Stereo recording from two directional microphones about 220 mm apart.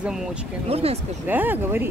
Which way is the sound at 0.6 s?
25° right (ahead or behind).